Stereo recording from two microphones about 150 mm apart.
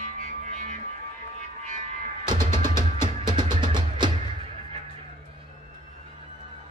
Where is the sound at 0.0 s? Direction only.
60° right (ahead or behind).